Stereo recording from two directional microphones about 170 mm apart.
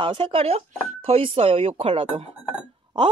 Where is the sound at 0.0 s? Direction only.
30° right (ahead or behind).